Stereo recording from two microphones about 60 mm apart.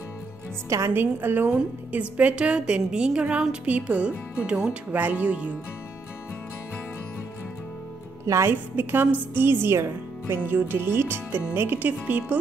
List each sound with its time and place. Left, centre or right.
0.7 s a woman's voice: right
0.9 s a woman's voice: right
1.5 s a woman's voice: right
4.9 s a woman's voice: right
8.5 s a woman's voice: right